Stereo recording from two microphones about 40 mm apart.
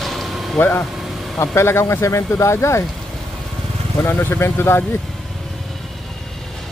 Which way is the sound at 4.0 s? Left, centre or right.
Left.